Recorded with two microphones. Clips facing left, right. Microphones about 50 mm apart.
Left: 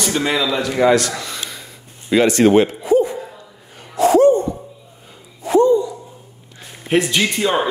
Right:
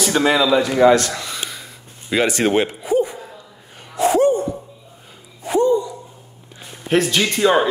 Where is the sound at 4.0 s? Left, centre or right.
Right.